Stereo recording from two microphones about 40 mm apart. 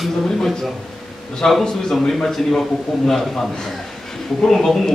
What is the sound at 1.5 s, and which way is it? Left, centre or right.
A man's voice, centre.